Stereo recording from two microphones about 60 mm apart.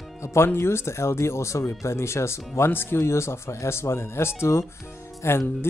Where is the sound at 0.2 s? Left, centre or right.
Left.